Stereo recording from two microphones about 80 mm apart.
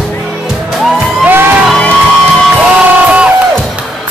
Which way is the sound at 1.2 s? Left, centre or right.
Right.